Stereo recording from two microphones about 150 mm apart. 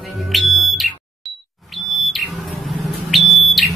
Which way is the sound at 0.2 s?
Centre (ahead or behind).